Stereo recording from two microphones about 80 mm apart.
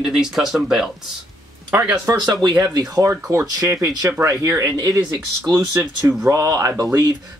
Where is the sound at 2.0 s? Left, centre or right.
Right.